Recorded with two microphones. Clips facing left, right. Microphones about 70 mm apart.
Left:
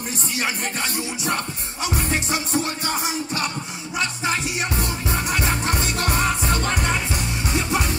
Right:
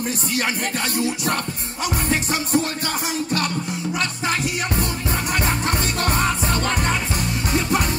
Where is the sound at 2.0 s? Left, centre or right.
Right.